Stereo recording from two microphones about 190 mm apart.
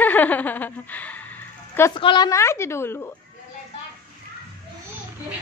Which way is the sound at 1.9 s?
25° left (ahead or behind).